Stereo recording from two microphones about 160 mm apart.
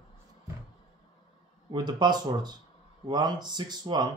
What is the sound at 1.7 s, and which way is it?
Speech, 30° right (ahead or behind).